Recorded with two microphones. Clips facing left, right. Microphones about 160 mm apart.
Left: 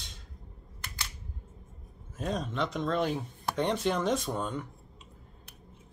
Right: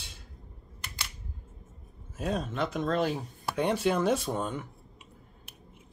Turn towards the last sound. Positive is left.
turn(degrees=-5)  # may be behind; listen again after turning